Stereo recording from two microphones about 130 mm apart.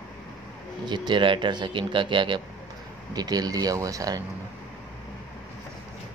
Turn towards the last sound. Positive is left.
turn(degrees=-25)  # may be behind; listen again after turning